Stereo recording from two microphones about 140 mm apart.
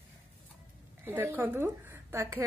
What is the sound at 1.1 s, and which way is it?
A woman's voice, 15° right (ahead or behind).